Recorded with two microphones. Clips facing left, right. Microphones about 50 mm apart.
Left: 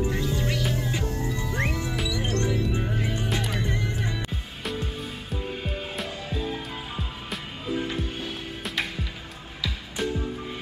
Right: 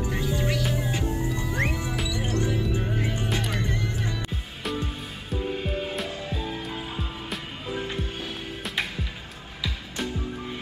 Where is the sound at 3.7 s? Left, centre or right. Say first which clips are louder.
Even; left.